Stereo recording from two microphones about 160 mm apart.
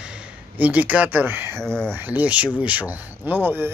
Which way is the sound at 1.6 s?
5° left (ahead or behind).